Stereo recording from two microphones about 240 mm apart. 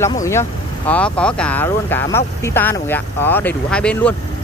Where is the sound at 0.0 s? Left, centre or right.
Centre.